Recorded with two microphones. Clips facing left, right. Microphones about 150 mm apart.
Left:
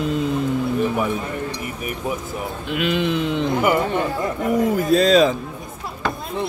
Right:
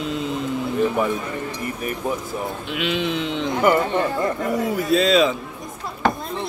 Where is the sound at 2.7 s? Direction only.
45° left (ahead or behind).